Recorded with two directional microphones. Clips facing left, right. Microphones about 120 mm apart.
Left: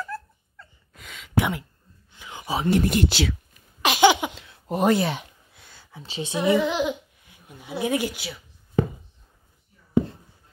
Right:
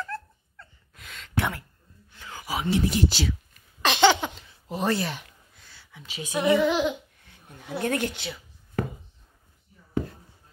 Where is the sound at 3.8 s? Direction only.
10° left (ahead or behind).